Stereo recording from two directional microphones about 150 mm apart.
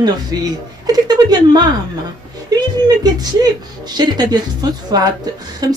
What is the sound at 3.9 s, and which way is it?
Speech, 25° right (ahead or behind).